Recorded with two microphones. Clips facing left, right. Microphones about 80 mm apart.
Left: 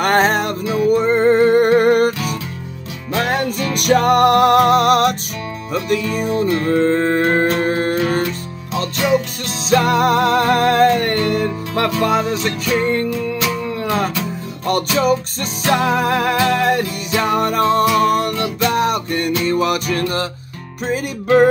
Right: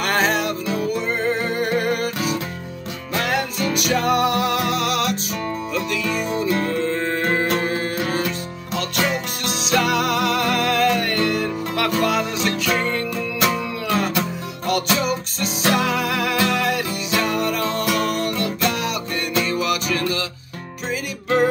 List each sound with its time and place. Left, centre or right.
0.0 s music: left
3.2 s music: left
9.7 s music: left
15.0 s music: left